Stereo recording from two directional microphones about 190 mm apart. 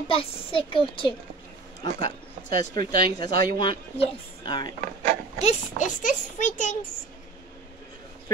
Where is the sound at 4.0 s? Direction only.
25° left (ahead or behind).